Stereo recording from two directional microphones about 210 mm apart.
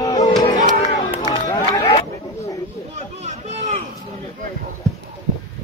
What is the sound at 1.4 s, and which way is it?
Speech, 20° left (ahead or behind).